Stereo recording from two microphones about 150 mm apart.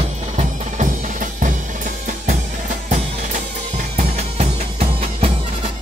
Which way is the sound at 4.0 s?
45° right (ahead or behind).